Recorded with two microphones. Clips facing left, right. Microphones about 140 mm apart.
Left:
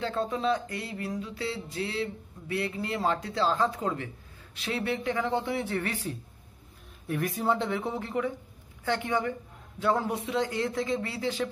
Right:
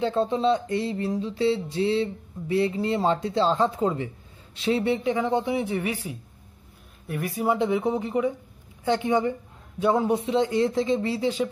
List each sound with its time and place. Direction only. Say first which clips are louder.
0.0 s music: right 6 dB; 25° right (ahead or behind)
7.1 s speech: right 2 dB; centre (ahead or behind)
8.8 s music: right 6 dB; 20° right (ahead or behind)